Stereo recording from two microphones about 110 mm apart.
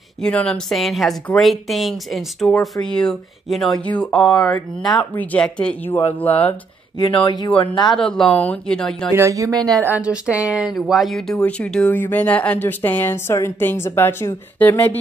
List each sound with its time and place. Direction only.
0.2 s speech: 10° left (ahead or behind)
7.2 s speech: 35° left (ahead or behind)
7.9 s speech: 5° left (ahead or behind)
9.1 s speech: 30° right (ahead or behind)
9.8 s speech: 15° right (ahead or behind); by 11.3 s centre (ahead or behind)
11.3 s speech: 10° left (ahead or behind)